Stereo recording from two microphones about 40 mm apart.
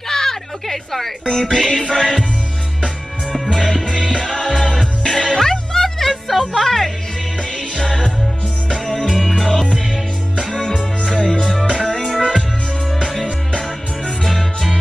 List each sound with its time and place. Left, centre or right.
0.1 s a sound: centre
1.2 s music: centre
3.5 s music: centre
7.7 s music: left
13.5 s music: left
14.2 s music: centre